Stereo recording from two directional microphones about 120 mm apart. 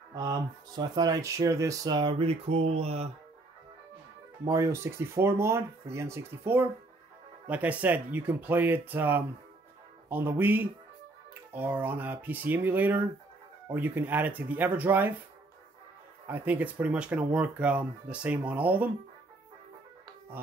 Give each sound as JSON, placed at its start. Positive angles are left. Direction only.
{"t": 0.1, "sound": "speech", "side_deg": -35}
{"t": 4.5, "sound": "speech", "side_deg": -25}
{"t": 16.3, "sound": "speech", "side_deg": -15}